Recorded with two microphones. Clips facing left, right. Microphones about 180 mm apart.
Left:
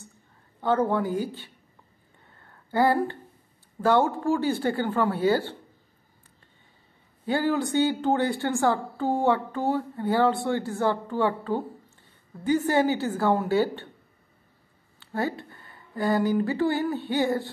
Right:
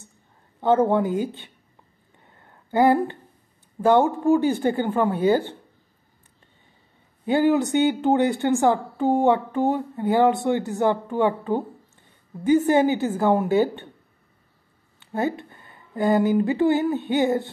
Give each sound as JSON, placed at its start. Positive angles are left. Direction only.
{"t": 0.6, "sound": "a woman's voice", "side_deg": -20}
{"t": 2.2, "sound": "a sound", "side_deg": -20}
{"t": 3.8, "sound": "a woman's voice", "side_deg": -15}
{"t": 7.2, "sound": "a woman's voice", "side_deg": -20}
{"t": 15.0, "sound": "speech", "side_deg": -20}